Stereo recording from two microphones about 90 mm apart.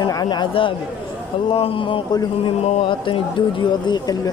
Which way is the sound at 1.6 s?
80° left.